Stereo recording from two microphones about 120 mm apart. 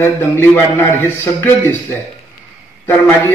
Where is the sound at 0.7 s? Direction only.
15° left (ahead or behind).